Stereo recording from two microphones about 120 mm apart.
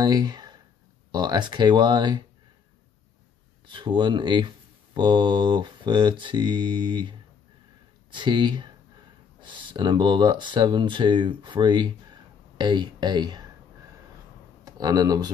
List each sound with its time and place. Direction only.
0.0 s speech: 35° right (ahead or behind)
3.6 s speech: 40° right (ahead or behind)
14.6 s speech: 30° right (ahead or behind)